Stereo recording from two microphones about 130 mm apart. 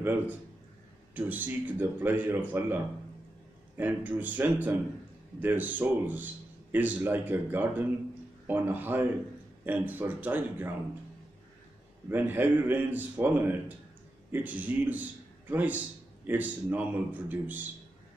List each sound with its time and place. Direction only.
1.1 s a man's voice: 15° right (ahead or behind)
12.1 s a man's voice: 15° right (ahead or behind)